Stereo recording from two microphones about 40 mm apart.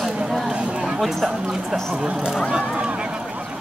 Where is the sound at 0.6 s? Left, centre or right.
Right.